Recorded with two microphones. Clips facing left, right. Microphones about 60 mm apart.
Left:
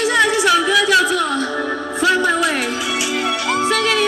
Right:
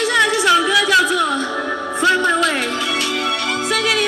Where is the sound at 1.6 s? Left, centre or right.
Centre.